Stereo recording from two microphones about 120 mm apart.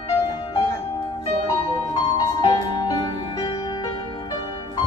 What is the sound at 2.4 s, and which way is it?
Music, 40° left (ahead or behind).